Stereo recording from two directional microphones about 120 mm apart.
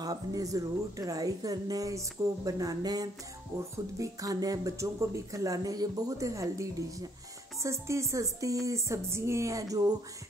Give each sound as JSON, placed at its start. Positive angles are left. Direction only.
{"t": 0.0, "sound": "speech", "side_deg": -30}